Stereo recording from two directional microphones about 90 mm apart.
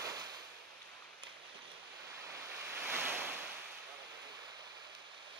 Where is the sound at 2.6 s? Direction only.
20° right (ahead or behind).